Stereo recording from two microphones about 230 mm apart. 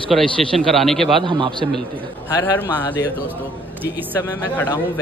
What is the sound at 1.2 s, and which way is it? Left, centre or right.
Speech, right.